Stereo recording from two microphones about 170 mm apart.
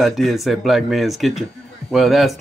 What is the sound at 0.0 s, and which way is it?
Speech, centre (ahead or behind).